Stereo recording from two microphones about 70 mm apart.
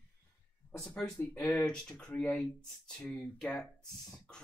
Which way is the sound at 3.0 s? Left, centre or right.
Centre.